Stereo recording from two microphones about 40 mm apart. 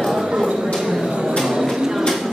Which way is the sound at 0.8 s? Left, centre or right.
Centre.